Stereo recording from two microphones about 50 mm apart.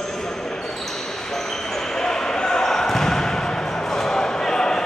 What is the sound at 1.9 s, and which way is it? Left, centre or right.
Basketball bounce, centre.